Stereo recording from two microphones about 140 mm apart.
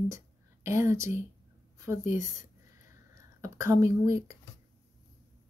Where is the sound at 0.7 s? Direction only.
20° right (ahead or behind).